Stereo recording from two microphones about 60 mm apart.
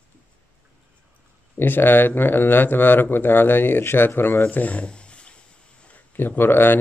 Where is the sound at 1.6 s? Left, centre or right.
Left.